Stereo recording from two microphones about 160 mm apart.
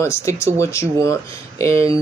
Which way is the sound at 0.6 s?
20° left (ahead or behind).